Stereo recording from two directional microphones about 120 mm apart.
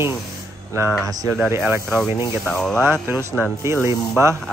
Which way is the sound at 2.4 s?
5° left (ahead or behind).